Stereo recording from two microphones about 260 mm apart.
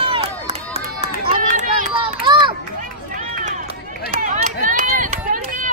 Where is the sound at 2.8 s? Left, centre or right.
Right.